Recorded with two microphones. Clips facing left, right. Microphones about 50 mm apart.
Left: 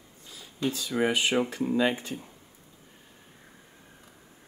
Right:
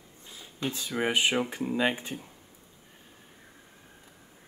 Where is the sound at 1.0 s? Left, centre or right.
Right.